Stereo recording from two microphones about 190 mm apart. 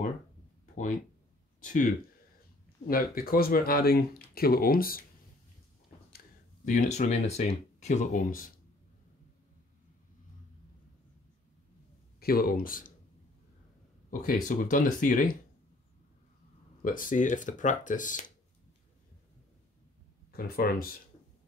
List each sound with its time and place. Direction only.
1.6 s speech: 40° left (ahead or behind)
2.9 s speech: 50° left (ahead or behind)
6.1 s speech: 45° left (ahead or behind)
12.2 s speech: 55° left (ahead or behind)
14.2 s speech: 45° left (ahead or behind)
16.8 s speech: 45° left (ahead or behind)
20.3 s speech: 50° left (ahead or behind)